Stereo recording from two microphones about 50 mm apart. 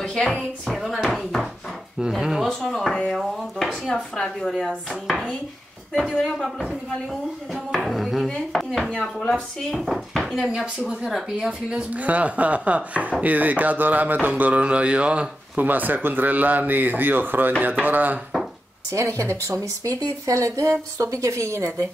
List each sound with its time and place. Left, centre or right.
0.1 s speech: centre
0.7 s speech: centre
2.0 s speech: centre
2.6 s speech: centre
3.5 s dishes: centre
6.1 s dishes: centre
6.9 s speech: centre
8.5 s chopping: centre
9.3 s speech: centre
11.9 s speech: right
15.5 s speech: right
18.9 s speech: right
19.4 s a woman's voice: right